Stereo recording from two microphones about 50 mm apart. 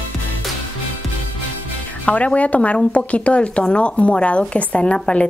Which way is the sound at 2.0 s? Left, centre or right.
Left.